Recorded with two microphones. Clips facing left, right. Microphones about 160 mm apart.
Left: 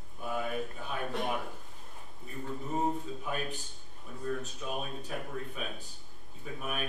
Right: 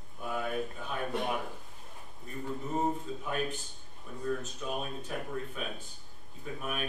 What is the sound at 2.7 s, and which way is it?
A man's voice, centre (ahead or behind).